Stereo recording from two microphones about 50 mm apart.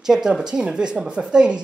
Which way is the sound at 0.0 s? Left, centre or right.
Centre.